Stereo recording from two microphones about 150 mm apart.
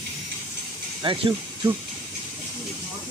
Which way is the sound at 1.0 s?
35° right (ahead or behind).